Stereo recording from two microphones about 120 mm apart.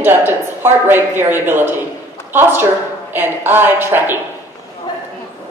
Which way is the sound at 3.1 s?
15° right (ahead or behind).